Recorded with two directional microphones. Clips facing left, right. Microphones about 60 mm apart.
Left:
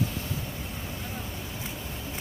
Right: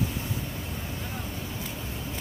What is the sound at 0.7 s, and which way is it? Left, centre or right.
Vehicle, centre.